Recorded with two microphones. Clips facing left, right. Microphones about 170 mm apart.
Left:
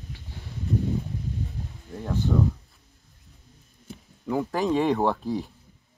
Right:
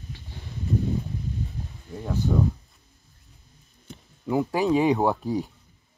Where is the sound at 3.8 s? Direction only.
Centre (ahead or behind).